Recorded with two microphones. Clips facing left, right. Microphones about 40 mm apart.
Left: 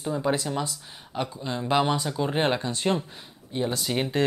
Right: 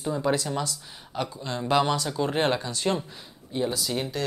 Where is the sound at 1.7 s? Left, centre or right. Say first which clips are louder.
Even; centre.